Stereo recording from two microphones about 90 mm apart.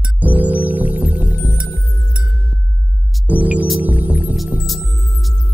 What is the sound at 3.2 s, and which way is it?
Music, 20° right (ahead or behind).